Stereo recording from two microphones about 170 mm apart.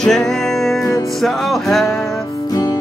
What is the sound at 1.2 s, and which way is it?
Music, centre (ahead or behind).